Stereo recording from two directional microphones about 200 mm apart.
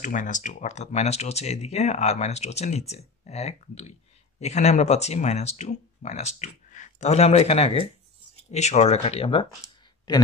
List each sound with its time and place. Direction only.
0.0 s speech: 40° left (ahead or behind)